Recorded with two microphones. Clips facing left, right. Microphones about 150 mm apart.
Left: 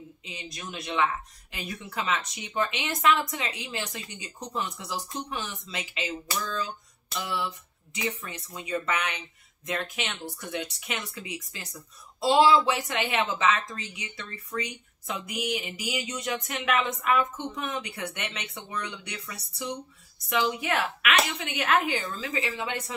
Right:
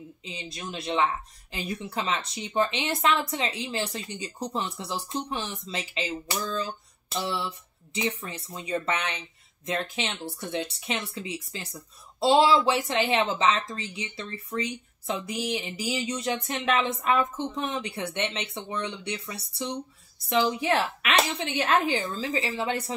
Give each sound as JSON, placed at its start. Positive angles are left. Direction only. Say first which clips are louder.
{"t": 0.2, "sound": "speech", "louder": "right 3 dB", "side_deg": -30}